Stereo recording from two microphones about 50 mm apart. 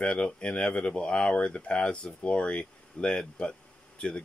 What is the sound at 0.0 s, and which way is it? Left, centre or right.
Speech, centre.